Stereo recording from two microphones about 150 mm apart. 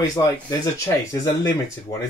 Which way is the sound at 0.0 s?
25° left (ahead or behind).